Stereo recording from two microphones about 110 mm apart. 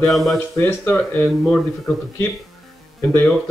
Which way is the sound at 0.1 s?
Centre (ahead or behind).